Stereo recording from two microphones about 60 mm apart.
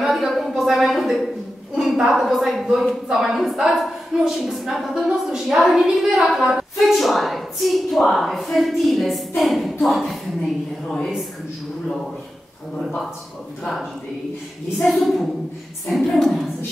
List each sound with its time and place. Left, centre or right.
0.0 s a sound: centre
1.8 s a woman's voice: centre
14.8 s a woman's voice: centre